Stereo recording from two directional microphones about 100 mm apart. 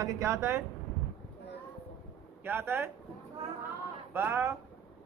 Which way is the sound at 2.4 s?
25° right (ahead or behind).